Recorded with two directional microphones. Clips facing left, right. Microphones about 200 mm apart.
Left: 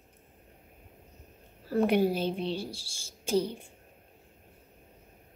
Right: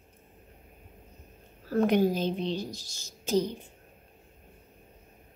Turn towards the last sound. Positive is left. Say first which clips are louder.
# right 1 dB
turn(degrees=10)  # may be behind; listen again after turning